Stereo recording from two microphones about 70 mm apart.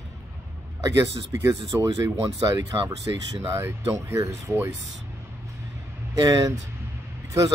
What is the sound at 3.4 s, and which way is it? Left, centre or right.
Speech, right.